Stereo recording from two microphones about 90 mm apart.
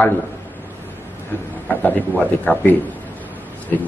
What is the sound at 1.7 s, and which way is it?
A man's voice, 15° left (ahead or behind).